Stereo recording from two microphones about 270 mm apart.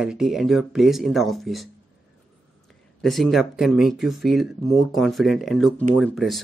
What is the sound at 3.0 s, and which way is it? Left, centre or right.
Speech, centre.